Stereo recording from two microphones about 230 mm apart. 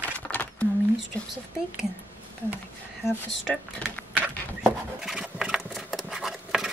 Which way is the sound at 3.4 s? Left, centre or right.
Centre.